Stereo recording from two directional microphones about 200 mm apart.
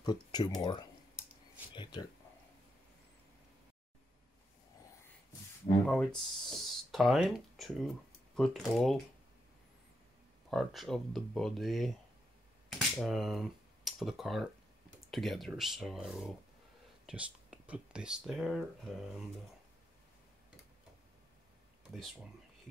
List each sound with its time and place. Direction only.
0.0 s speech: 20° left (ahead or behind)
5.9 s speech: centre (ahead or behind)
10.5 s speech: centre (ahead or behind)
12.6 s a sound: centre (ahead or behind)
15.0 s speech: centre (ahead or behind)